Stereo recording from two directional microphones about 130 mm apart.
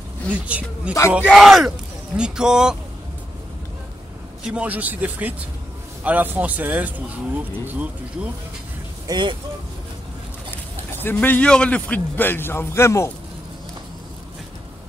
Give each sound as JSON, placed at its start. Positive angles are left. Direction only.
{"t": 0.5, "sound": "speech", "side_deg": -10}
{"t": 1.2, "sound": "speech", "side_deg": 0}
{"t": 4.5, "sound": "speech", "side_deg": -10}
{"t": 9.0, "sound": "speech", "side_deg": -35}
{"t": 11.0, "sound": "a man's voice", "side_deg": 15}